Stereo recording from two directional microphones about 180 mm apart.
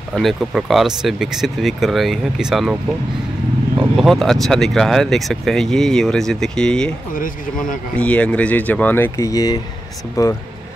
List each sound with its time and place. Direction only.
0.1 s speech: centre (ahead or behind)
3.9 s speech: centre (ahead or behind); by 10.3 s 15° left (ahead or behind)